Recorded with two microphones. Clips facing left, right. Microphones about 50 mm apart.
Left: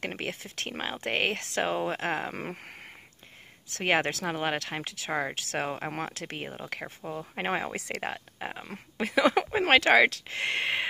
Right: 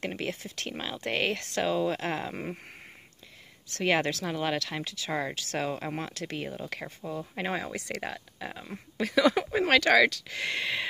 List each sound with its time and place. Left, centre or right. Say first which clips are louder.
0.0 s speech: right 1 dB; left
2.3 s speech: even; left
3.8 s speech: even; left
7.3 s speech: left 3 dB; left